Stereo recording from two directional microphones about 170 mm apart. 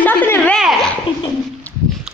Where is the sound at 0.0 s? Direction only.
10° left (ahead or behind).